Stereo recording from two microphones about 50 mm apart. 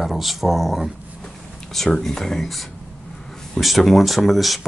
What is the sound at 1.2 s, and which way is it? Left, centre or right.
Speech, centre.